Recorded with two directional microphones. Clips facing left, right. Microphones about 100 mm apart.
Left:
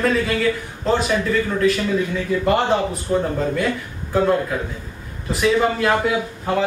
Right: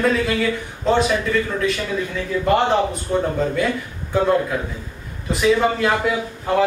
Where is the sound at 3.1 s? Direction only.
Centre (ahead or behind).